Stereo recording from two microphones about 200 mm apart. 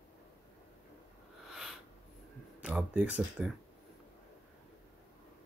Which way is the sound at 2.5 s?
5° right (ahead or behind).